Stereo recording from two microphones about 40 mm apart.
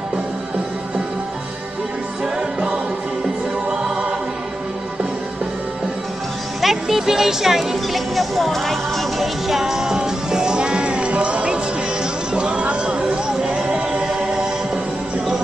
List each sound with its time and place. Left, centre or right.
6.6 s speech: centre
9.5 s music: centre; by 13.0 s right
13.0 s a sound: centre
14.0 s choir: centre